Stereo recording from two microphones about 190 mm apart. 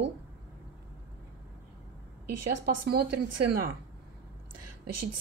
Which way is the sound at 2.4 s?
55° right (ahead or behind).